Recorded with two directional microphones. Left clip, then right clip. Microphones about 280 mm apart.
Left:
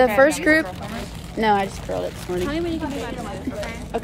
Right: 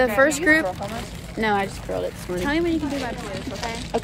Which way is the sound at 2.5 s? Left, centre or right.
Right.